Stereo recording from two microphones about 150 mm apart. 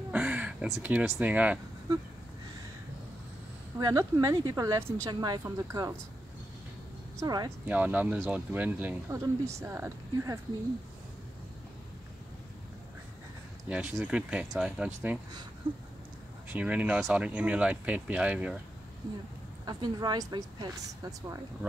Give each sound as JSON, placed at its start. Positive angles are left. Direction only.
{"t": 0.1, "sound": "a sound", "side_deg": -10}
{"t": 0.7, "sound": "speech", "side_deg": -15}
{"t": 3.8, "sound": "speech", "side_deg": -20}
{"t": 7.2, "sound": "speech", "side_deg": -25}
{"t": 7.6, "sound": "speech", "side_deg": -10}
{"t": 13.7, "sound": "speech", "side_deg": -5}
{"t": 16.4, "sound": "speech", "side_deg": -10}
{"t": 19.6, "sound": "speech", "side_deg": -25}